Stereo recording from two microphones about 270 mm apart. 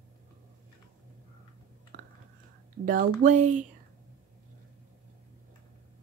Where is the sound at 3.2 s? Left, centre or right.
Right.